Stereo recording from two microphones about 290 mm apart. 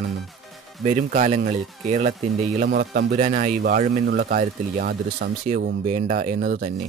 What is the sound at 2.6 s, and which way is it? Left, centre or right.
Speech, right.